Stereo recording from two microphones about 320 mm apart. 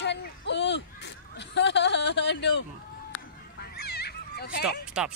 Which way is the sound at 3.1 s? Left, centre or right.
Left.